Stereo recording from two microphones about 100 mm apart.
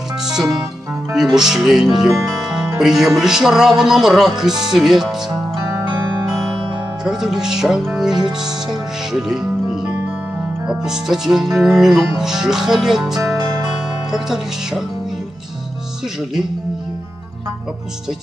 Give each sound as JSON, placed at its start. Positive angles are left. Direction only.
{"t": 0.2, "sound": "music", "side_deg": -5}
{"t": 1.1, "sound": "speech", "side_deg": -5}
{"t": 7.1, "sound": "speech", "side_deg": -5}
{"t": 9.1, "sound": "music", "side_deg": -5}
{"t": 10.6, "sound": "speech", "side_deg": -10}
{"t": 13.4, "sound": "music", "side_deg": -40}
{"t": 13.7, "sound": "speech", "side_deg": -5}